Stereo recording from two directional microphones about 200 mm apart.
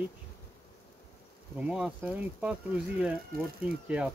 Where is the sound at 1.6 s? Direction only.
5° right (ahead or behind).